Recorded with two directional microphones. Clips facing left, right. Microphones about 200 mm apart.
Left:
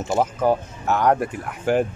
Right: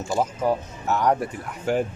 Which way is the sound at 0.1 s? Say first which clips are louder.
Left 3 dB; 55° left (ahead or behind).